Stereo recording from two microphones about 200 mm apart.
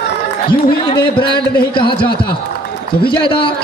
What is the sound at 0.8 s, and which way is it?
A man's voice, 25° left (ahead or behind).